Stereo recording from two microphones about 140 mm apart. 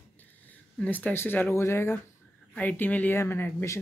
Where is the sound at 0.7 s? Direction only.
10° left (ahead or behind).